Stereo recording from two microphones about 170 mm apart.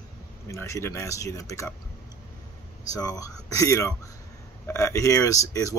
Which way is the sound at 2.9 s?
20° left (ahead or behind).